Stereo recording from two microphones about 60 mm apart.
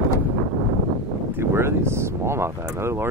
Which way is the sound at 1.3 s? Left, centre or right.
Right.